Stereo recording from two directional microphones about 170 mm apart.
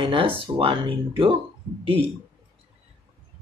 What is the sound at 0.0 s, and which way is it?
Speech, 30° right (ahead or behind).